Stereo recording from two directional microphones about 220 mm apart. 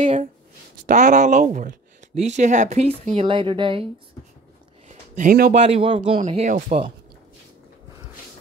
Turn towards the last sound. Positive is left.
turn(degrees=-30)  # may be behind; listen again after turning